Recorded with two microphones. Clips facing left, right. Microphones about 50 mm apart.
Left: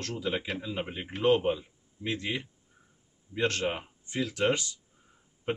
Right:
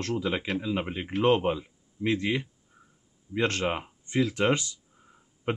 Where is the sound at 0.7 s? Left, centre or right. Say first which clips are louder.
Right 5 dB; centre.